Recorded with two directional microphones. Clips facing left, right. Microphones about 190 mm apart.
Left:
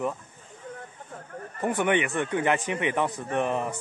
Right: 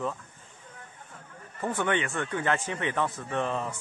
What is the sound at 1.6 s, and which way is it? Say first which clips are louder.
Speech: left 4 dB; 15° left (ahead or behind).